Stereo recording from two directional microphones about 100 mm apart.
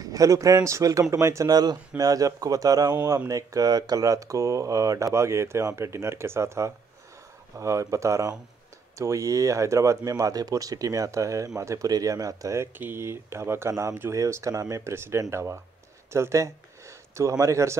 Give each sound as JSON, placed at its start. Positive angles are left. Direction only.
{"t": 0.0, "sound": "speech", "side_deg": -35}
{"t": 12.7, "sound": "speech", "side_deg": -20}